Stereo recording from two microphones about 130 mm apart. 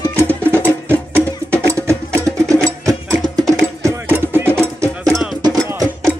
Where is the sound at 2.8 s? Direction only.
25° right (ahead or behind).